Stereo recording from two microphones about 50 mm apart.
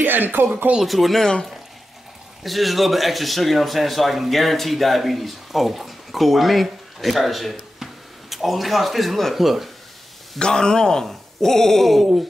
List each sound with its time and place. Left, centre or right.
0.0 s speech: right
0.7 s speech: centre
2.4 s speech: centre
10.4 s speech: centre